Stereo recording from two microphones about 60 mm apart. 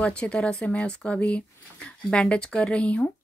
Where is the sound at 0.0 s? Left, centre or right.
Centre.